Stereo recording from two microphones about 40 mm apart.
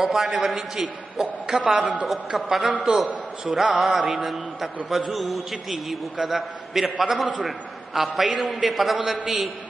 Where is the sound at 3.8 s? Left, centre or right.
Centre.